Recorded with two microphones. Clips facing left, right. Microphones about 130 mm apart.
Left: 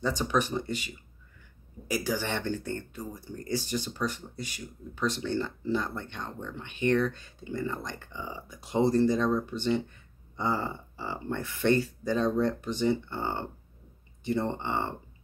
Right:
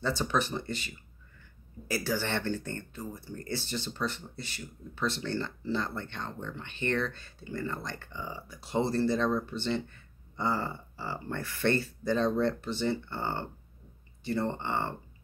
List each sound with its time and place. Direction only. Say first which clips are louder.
0.0 s speech: left 2 dB; 15° left (ahead or behind)